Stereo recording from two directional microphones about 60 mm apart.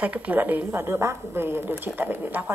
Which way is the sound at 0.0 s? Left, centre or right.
Right.